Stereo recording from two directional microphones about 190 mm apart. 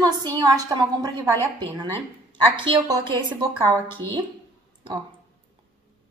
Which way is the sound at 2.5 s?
25° right (ahead or behind).